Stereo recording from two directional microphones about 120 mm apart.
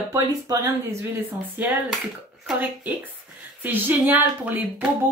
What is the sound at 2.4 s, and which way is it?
Speech, 15° right (ahead or behind).